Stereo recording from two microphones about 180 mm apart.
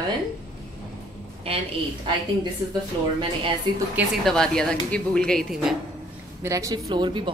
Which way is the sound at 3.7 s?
25° right (ahead or behind).